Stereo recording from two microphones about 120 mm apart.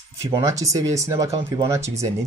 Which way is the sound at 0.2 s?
25° right (ahead or behind).